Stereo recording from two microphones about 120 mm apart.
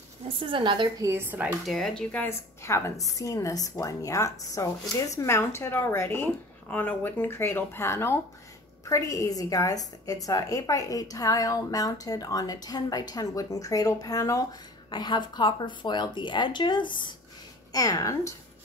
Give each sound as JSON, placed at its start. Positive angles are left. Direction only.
{"t": 0.4, "sound": "a woman's voice", "side_deg": -45}
{"t": 1.0, "sound": "speech", "side_deg": -15}
{"t": 1.7, "sound": "speech", "side_deg": 0}
{"t": 2.2, "sound": "a woman's voice", "side_deg": 20}
{"t": 17.7, "sound": "speech", "side_deg": 30}